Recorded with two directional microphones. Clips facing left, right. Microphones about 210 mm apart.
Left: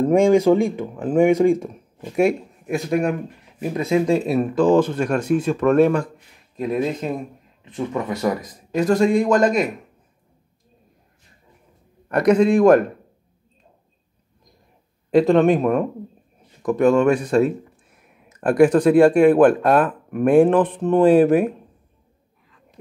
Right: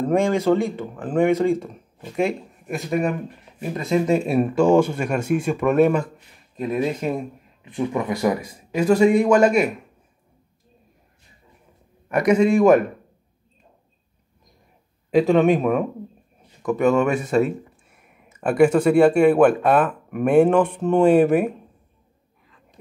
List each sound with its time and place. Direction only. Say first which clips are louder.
0.1 s speech: left 4 dB; 15° left (ahead or behind)
2.7 s speech: left 2 dB; centre (ahead or behind)
12.1 s speech: left 1 dB; 10° right (ahead or behind)
15.0 s speech: left 1 dB; 5° right (ahead or behind)
21.3 s speech: left 2 dB; centre (ahead or behind)